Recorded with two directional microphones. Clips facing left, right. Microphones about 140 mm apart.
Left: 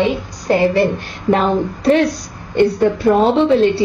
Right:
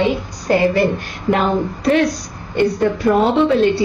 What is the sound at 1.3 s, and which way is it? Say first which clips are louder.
Speech: left 2 dB; 30° left (ahead or behind).